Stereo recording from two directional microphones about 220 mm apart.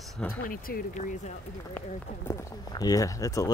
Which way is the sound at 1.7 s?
10° left (ahead or behind).